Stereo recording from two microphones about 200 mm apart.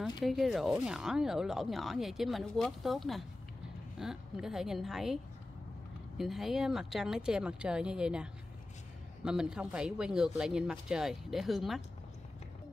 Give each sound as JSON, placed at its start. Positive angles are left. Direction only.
{"t": 0.0, "sound": "speech", "side_deg": 0}